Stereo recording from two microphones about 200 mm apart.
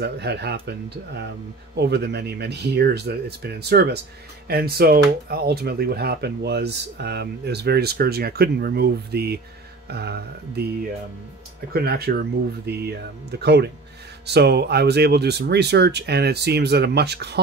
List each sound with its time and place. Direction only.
0.0 s speech: 55° right (ahead or behind)
11.7 s speech: 50° right (ahead or behind)